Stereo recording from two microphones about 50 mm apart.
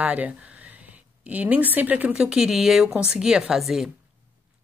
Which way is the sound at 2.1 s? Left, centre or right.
Centre.